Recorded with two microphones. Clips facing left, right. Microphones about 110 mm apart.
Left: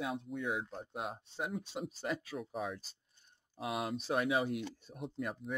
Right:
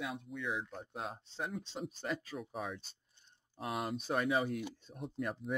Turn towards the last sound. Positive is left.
turn(degrees=0)  # may be behind; listen again after turning